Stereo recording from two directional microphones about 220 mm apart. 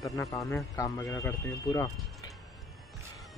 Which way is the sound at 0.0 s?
15° left (ahead or behind).